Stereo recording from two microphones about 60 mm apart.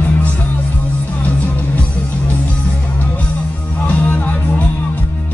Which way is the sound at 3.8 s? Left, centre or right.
Left.